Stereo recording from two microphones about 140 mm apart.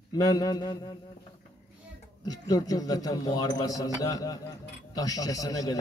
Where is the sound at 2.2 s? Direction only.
25° left (ahead or behind).